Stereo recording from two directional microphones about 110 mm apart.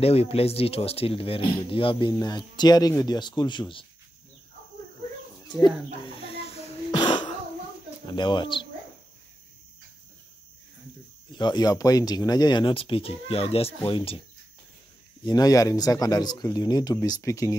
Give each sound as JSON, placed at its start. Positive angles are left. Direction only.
{"t": 0.0, "sound": "speech", "side_deg": 65}
{"t": 2.1, "sound": "speech", "side_deg": 40}
{"t": 6.0, "sound": "snake", "side_deg": 65}
{"t": 6.9, "sound": "throat clearing", "side_deg": 45}
{"t": 8.1, "sound": "speech", "side_deg": 45}
{"t": 11.3, "sound": "speech", "side_deg": 40}
{"t": 15.2, "sound": "speech", "side_deg": 35}